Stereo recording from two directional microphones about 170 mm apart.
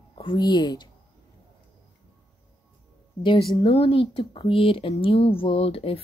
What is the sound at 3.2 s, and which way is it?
Speech, 25° left (ahead or behind).